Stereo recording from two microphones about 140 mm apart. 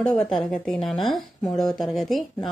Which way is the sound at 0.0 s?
5° left (ahead or behind).